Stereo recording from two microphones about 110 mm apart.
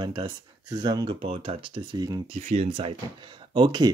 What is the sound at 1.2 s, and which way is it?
Speech, 60° right (ahead or behind).